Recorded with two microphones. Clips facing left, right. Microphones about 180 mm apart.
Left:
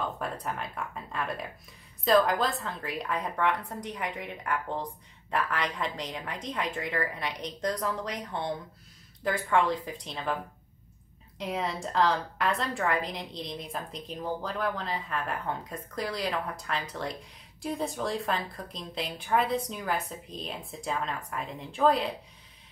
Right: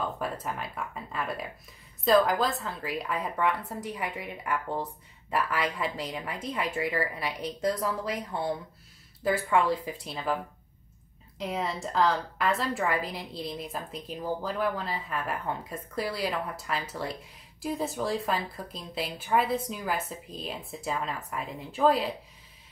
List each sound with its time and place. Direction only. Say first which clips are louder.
0.2 s a woman's voice: right 1 dB; 5° right (ahead or behind)
11.3 s a woman's voice: even; centre (ahead or behind)